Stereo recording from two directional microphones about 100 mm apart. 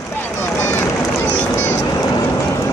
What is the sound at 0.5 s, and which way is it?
Run, 25° left (ahead or behind).